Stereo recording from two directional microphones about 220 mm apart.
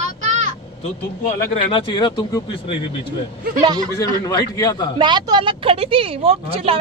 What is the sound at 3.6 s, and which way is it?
Speech, 20° right (ahead or behind).